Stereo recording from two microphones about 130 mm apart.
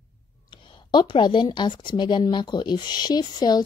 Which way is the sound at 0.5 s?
40° left (ahead or behind).